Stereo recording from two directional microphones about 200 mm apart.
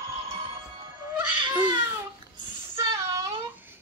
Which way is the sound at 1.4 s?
20° right (ahead or behind).